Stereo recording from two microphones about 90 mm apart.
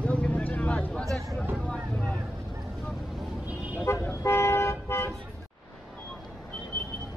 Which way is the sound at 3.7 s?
25° left (ahead or behind).